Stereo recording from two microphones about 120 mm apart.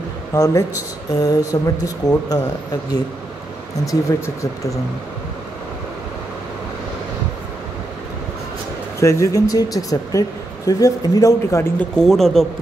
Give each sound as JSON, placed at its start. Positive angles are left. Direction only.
{"t": 0.3, "sound": "speech", "side_deg": 30}
{"t": 3.8, "sound": "speech", "side_deg": 30}
{"t": 9.0, "sound": "speech", "side_deg": 25}
{"t": 11.8, "sound": "speech", "side_deg": 5}